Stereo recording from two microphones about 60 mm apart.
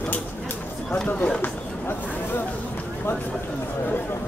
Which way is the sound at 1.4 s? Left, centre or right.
Left.